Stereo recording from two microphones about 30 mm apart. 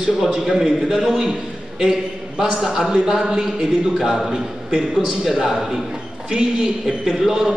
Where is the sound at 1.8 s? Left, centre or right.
Right.